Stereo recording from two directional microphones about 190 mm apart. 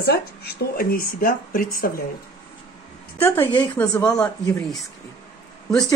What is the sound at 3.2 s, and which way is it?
Speech, 15° left (ahead or behind).